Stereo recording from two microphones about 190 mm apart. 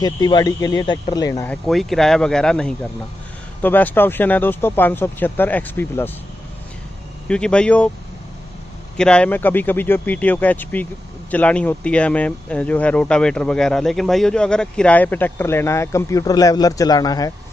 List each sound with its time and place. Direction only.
0.0 s speech: 20° left (ahead or behind)
1.5 s speech: centre (ahead or behind)
7.2 s speech: 5° left (ahead or behind)
8.9 s speech: 5° left (ahead or behind); by 17.3 s 20° left (ahead or behind)